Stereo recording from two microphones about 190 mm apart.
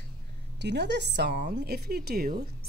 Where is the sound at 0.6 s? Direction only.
65° right (ahead or behind).